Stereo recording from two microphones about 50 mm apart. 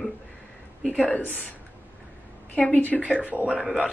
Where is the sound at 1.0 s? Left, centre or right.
Left.